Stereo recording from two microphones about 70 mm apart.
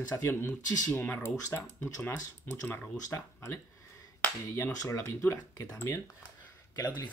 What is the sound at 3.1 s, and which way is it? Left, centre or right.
Speech, left.